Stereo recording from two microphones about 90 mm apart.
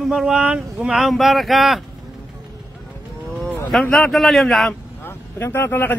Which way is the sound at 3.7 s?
5° left (ahead or behind).